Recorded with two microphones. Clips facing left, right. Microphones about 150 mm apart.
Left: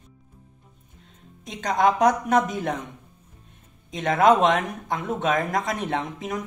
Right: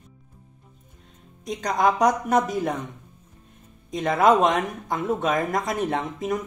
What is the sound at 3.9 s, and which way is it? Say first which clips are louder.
Speech: even; centre (ahead or behind).